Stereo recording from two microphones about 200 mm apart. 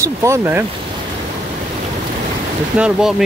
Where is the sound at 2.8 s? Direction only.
5° right (ahead or behind).